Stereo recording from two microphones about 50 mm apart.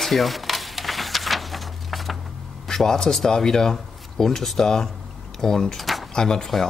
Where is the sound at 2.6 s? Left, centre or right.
Centre.